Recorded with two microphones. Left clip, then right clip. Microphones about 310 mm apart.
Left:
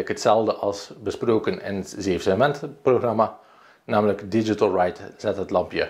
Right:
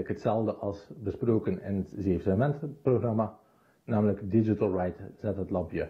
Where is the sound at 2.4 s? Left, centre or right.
Left.